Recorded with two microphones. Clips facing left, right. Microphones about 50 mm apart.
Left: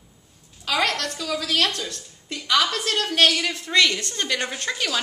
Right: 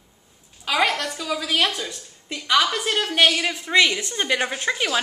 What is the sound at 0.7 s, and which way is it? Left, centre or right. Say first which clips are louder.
A woman's voice: right 2 dB; centre.